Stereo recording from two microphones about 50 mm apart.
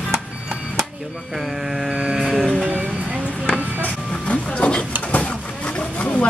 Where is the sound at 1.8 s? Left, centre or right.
Centre.